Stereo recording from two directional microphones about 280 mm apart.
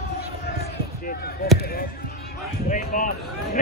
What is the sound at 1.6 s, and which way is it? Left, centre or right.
Speech, left.